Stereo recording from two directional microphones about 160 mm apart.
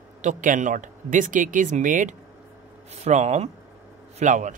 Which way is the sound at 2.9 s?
45° right (ahead or behind).